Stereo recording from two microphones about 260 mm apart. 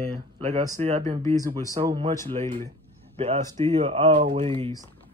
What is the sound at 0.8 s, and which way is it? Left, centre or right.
Speech, right.